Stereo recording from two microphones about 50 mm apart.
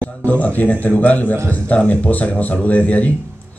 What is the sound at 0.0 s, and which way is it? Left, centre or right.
Speech, left.